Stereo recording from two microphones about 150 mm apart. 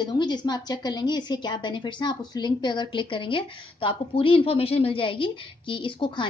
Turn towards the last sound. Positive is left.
turn(degrees=35)  # may be behind; listen again after turning